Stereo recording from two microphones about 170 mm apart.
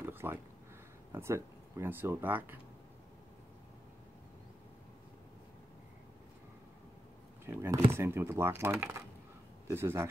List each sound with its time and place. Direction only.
0.0 s a sound: 15° right (ahead or behind)
1.1 s speech: 15° right (ahead or behind)
7.4 s speech: 15° right (ahead or behind)